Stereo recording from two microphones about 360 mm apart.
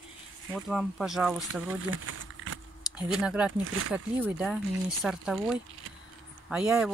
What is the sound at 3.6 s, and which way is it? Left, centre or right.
Speech, right.